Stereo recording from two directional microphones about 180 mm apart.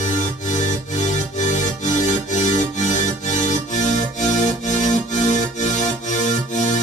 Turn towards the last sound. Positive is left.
turn(degrees=40)  # may be behind; listen again after turning